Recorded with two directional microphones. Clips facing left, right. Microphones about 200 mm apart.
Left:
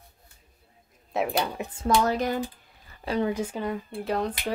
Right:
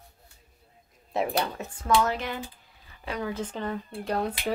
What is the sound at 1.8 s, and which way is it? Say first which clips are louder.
Speech: left 2 dB; 40° left (ahead or behind).